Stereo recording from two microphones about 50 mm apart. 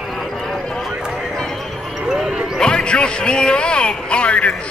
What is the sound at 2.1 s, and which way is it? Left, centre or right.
Basketball bounce, centre.